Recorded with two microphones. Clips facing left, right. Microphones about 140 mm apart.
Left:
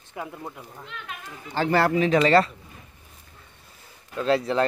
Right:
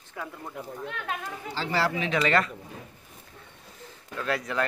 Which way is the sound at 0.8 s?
65° right (ahead or behind).